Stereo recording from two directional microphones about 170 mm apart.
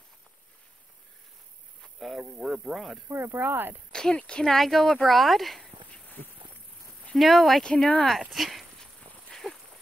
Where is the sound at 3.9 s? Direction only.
5° left (ahead or behind).